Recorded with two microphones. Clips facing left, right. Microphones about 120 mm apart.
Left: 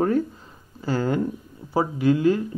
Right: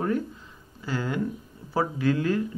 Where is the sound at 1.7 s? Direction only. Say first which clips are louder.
Left 4 dB; 20° left (ahead or behind).